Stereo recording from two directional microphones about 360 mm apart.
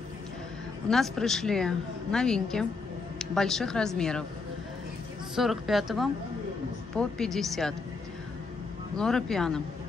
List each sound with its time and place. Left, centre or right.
0.8 s a woman's voice: centre
5.3 s a woman's voice: centre
8.9 s a woman's voice: centre